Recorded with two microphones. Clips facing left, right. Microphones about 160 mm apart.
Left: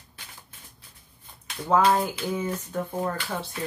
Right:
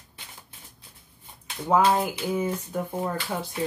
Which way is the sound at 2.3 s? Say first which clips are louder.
Right 2 dB; 10° right (ahead or behind).